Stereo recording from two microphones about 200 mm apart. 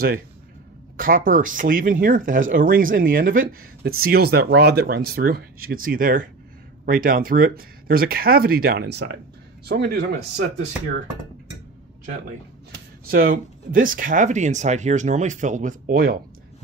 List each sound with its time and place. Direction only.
0.9 s speech: 45° right (ahead or behind)
13.0 s speech: 45° right (ahead or behind)